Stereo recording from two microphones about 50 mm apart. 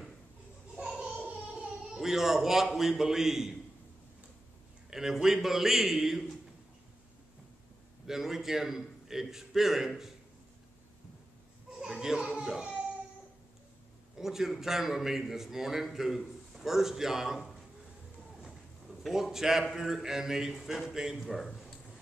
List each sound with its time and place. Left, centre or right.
0.7 s a sound: centre
2.0 s a man's voice: centre
4.9 s a man's voice: centre
8.1 s a man's voice: centre
11.7 s children playing: centre
14.1 s a man's voice: centre
19.3 s a man's voice: centre
21.5 s a sound: centre